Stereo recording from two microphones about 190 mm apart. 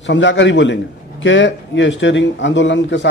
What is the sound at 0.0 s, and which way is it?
A man's voice, 70° left (ahead or behind).